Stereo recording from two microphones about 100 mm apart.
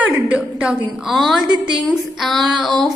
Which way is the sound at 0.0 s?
15° right (ahead or behind).